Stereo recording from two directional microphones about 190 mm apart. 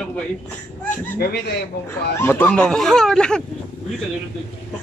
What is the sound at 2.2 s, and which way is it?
Speech, 10° left (ahead or behind).